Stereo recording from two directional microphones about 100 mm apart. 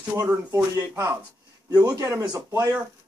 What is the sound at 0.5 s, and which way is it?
Speech, 30° right (ahead or behind).